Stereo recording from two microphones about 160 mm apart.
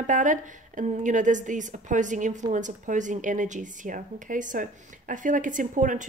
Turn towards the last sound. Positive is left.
turn(degrees=-55)  # may be behind; listen again after turning